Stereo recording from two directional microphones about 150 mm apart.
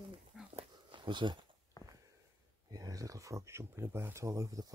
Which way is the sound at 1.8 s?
25° left (ahead or behind).